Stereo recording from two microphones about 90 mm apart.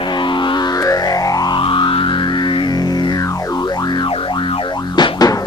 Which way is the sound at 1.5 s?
65° left (ahead or behind).